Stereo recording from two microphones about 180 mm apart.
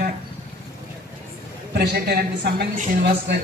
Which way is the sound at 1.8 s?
60° right (ahead or behind).